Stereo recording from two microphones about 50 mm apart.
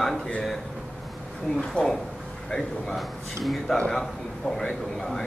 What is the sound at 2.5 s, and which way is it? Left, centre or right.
A man's voice, centre.